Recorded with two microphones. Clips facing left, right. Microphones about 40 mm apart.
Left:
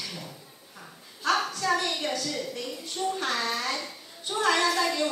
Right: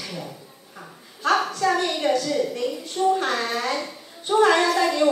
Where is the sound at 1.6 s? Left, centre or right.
Centre.